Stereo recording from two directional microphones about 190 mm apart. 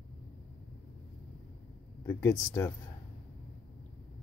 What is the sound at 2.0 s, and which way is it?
Speech, 15° left (ahead or behind).